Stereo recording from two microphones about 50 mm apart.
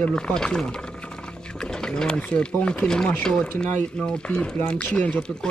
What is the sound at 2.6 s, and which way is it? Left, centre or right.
Speech, centre.